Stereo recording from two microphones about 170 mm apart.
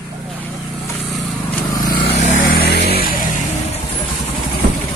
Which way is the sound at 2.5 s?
70° left (ahead or behind).